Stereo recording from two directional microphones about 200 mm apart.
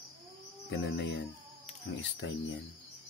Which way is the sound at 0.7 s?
65° left (ahead or behind).